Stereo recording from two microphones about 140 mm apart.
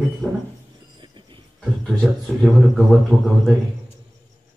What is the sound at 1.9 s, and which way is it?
Speech, 10° right (ahead or behind).